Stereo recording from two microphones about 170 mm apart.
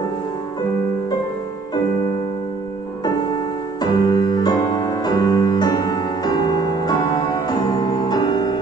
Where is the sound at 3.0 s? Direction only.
25° left (ahead or behind).